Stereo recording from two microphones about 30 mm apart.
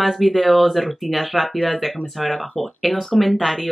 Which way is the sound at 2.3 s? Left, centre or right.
Centre.